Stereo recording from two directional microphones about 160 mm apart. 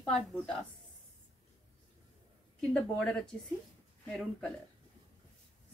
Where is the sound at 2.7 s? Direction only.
5° left (ahead or behind).